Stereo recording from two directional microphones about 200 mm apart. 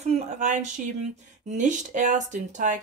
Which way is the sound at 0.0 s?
35° right (ahead or behind).